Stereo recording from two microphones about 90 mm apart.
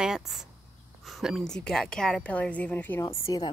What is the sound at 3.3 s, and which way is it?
Speech, 45° left (ahead or behind).